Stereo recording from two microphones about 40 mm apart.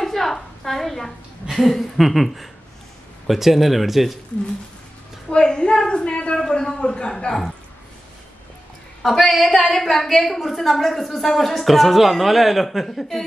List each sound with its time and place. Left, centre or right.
0.0 s a sound: centre
1.5 s a woman's voice: centre
5.3 s a woman's voice: centre
9.0 s a woman's voice: centre